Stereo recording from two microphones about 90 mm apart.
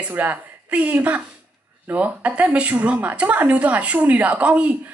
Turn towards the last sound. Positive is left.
turn(degrees=-15)  # may be behind; listen again after turning